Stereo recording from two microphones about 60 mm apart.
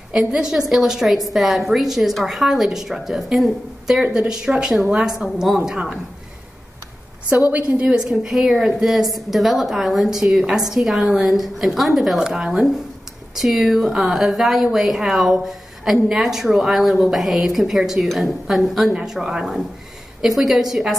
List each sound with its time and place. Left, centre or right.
0.1 s a woman's voice: centre
7.7 s a woman's voice: centre